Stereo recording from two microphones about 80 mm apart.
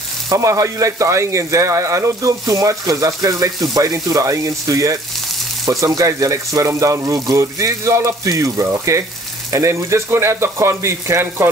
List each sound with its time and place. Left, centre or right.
0.3 s speech: right